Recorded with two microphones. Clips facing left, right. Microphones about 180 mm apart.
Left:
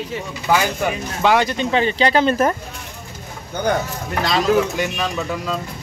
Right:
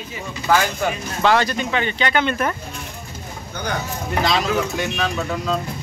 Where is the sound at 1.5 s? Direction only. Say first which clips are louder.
Left 4 dB; 30° left (ahead or behind).